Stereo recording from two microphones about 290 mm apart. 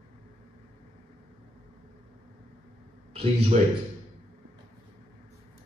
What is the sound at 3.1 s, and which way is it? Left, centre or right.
Speech, right.